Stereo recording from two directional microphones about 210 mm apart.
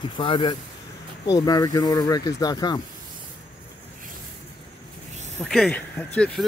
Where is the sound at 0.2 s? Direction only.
25° left (ahead or behind).